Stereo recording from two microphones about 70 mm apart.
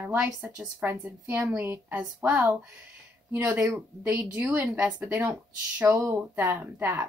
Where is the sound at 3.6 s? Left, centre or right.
Right.